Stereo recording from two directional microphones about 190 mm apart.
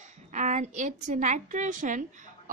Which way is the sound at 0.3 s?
40° right (ahead or behind).